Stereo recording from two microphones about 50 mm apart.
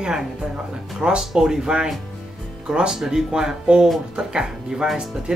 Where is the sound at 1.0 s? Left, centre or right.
Centre.